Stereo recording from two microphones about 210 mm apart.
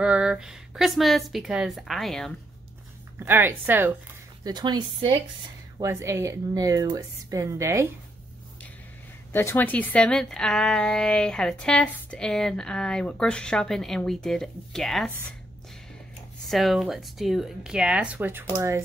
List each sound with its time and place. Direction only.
0.0 s speech: 5° right (ahead or behind)
3.2 s a woman's voice: 10° right (ahead or behind)
4.5 s a woman's voice: 20° right (ahead or behind)
9.3 s speech: 10° left (ahead or behind)
16.4 s speech: centre (ahead or behind)